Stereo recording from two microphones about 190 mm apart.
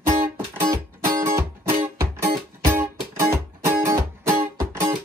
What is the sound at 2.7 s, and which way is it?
Music, 15° right (ahead or behind).